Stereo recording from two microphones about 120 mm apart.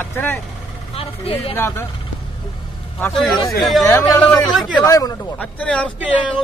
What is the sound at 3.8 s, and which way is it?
Speech, 25° left (ahead or behind).